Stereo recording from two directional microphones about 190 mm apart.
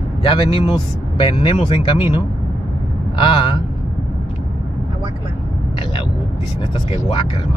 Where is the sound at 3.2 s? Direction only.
25° left (ahead or behind).